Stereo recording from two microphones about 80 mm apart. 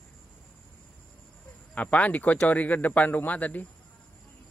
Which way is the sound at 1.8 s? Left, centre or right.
Centre.